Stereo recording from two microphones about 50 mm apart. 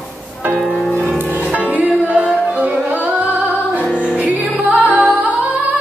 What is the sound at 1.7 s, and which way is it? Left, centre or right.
Music, right.